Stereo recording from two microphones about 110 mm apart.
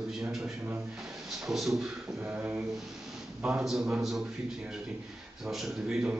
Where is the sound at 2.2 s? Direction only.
20° right (ahead or behind).